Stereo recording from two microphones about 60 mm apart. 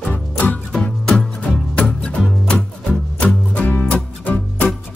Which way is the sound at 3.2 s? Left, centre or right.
Left.